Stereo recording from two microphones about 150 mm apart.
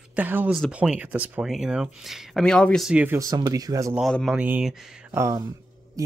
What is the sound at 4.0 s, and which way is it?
Speech, centre (ahead or behind).